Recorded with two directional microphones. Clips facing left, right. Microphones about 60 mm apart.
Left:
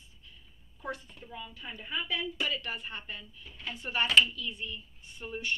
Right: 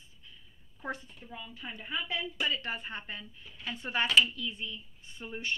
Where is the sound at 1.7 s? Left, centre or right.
Right.